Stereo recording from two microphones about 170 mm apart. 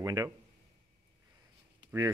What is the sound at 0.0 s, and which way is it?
Speech, 20° right (ahead or behind).